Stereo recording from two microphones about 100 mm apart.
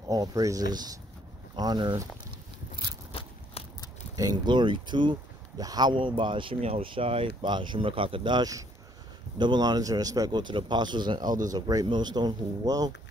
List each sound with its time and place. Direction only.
0.1 s speech: 35° right (ahead or behind)
3.1 s a sound: 75° left (ahead or behind)
4.1 s speech: 40° right (ahead or behind)